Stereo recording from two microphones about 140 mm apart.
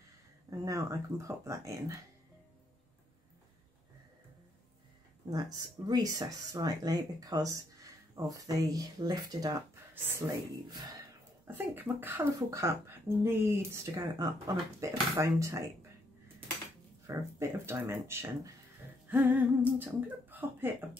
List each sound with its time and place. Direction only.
0.5 s speech: 25° right (ahead or behind)
5.9 s speech: 30° right (ahead or behind)
11.4 s speech: 15° right (ahead or behind)
17.0 s speech: 20° right (ahead or behind)